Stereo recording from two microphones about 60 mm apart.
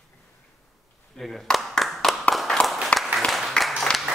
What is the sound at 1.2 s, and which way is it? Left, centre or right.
Clapping, centre.